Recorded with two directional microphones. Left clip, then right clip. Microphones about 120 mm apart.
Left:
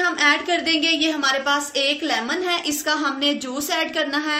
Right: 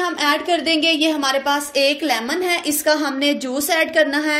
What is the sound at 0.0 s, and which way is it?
A woman's voice, 30° right (ahead or behind).